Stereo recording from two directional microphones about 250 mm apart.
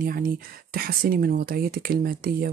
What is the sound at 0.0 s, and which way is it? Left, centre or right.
Speech, right.